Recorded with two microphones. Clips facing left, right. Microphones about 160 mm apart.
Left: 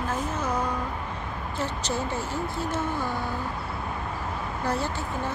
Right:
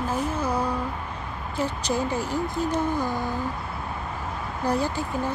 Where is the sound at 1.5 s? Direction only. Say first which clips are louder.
Right 4 dB; 15° right (ahead or behind).